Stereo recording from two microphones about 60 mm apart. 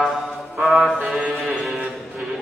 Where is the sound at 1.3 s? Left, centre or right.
Centre.